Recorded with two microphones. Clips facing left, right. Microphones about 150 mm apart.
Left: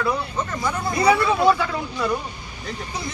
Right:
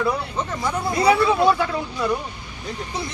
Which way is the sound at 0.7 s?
5° right (ahead or behind).